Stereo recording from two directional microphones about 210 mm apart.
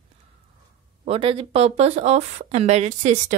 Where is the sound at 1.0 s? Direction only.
30° right (ahead or behind).